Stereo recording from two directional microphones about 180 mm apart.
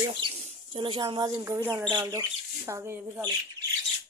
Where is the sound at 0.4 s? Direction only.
40° right (ahead or behind).